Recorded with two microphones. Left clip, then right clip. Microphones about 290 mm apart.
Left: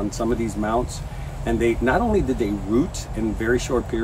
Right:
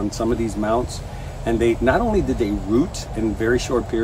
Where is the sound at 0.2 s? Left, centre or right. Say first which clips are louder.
Right 2 dB; centre.